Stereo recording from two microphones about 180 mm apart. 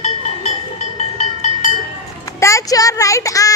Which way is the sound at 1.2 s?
40° left (ahead or behind).